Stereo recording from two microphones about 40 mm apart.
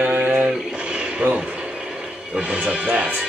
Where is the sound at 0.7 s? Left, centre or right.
Right.